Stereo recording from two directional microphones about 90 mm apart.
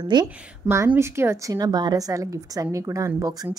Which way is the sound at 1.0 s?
30° right (ahead or behind).